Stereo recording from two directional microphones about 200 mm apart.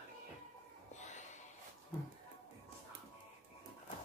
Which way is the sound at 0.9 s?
35° left (ahead or behind).